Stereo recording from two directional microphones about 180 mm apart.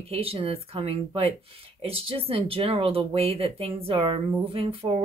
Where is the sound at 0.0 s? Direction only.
35° right (ahead or behind).